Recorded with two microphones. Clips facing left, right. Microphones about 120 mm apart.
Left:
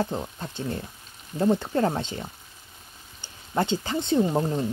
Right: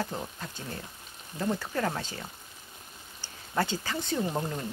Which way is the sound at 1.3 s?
25° left (ahead or behind).